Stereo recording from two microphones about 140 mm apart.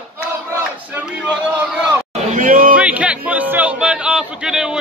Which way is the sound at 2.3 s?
75° right (ahead or behind).